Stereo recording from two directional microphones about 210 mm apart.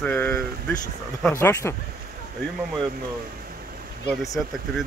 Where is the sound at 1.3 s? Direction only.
10° left (ahead or behind).